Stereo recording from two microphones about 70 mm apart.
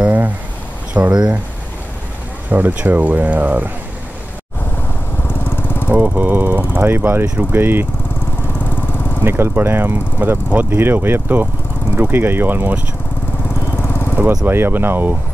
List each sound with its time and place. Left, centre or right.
0.0 s a sound: right
1.0 s speech: right
2.5 s speech: right
5.4 s lawn mower: left
5.9 s speech: right
9.2 s speech: right
13.7 s vehicle: left
14.4 s speech: right